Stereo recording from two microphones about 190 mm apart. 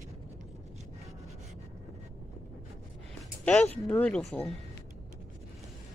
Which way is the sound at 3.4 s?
5° left (ahead or behind).